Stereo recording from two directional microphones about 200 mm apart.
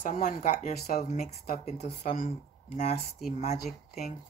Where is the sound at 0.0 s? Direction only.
40° left (ahead or behind).